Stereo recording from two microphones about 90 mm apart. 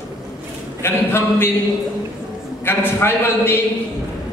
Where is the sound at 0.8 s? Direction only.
25° left (ahead or behind).